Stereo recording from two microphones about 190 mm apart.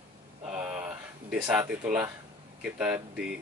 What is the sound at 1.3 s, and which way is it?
Speech, 5° right (ahead or behind).